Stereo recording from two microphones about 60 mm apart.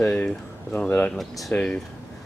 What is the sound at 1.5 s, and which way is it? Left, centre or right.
Speech, left.